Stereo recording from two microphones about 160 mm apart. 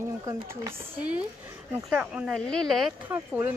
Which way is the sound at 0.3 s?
15° right (ahead or behind).